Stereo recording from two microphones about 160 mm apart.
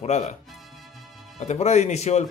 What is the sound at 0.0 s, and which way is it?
Speech, 45° left (ahead or behind).